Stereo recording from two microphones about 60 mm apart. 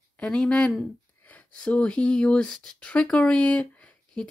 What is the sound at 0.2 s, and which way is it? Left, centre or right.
Speech, centre.